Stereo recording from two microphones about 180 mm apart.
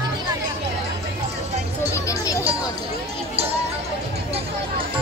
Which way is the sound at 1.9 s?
15° left (ahead or behind).